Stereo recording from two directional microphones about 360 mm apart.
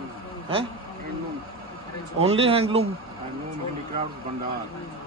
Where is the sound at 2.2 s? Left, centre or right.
Centre.